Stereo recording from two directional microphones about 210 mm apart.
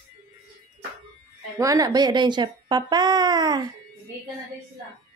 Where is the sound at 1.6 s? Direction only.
15° right (ahead or behind).